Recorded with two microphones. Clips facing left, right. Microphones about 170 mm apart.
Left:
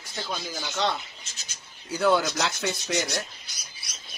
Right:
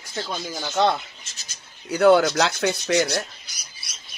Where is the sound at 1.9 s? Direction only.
65° right (ahead or behind).